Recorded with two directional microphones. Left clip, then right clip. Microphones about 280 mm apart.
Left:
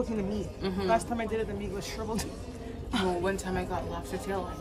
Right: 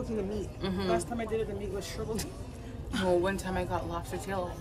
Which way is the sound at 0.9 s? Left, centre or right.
Left.